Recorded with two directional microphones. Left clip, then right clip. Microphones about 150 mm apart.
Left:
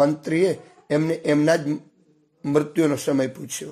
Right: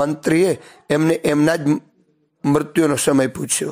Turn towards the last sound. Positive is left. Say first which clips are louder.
# right 6 dB
turn(degrees=-45)  # may be behind; listen again after turning